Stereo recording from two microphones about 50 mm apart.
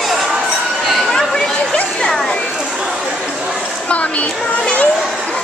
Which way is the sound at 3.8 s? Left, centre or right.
Left.